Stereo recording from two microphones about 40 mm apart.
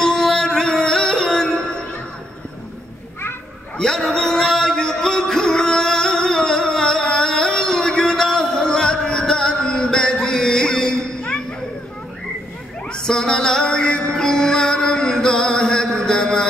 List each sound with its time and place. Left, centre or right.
0.0 s music: centre
3.7 s music: centre
12.9 s music: centre